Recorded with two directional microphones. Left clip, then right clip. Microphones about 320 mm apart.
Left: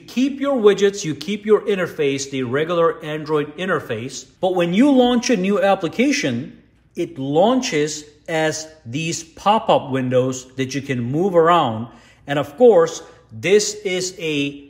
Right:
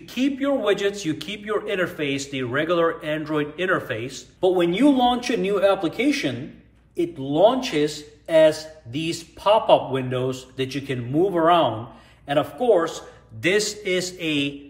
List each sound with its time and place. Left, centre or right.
0.1 s a man's voice: centre